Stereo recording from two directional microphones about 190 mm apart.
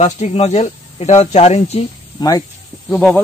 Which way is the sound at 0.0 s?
35° left (ahead or behind).